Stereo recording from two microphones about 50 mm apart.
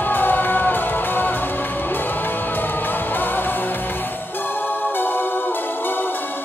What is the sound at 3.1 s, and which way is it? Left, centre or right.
Music, left.